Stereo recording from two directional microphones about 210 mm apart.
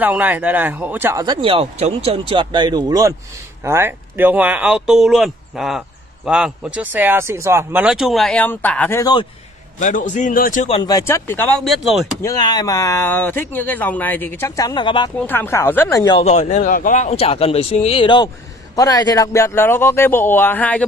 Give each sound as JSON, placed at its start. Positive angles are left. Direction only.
{"t": 0.0, "sound": "speech", "side_deg": -10}
{"t": 9.8, "sound": "a man's voice", "side_deg": 40}
{"t": 10.8, "sound": "speech", "side_deg": 15}
{"t": 12.2, "sound": "speech", "side_deg": 15}
{"t": 15.1, "sound": "speech", "side_deg": 10}
{"t": 16.2, "sound": "a man's voice", "side_deg": 30}